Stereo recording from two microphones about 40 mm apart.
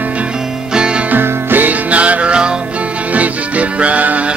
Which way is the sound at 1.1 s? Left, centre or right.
Right.